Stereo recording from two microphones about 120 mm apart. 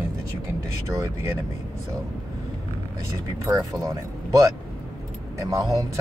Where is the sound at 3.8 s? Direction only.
25° right (ahead or behind).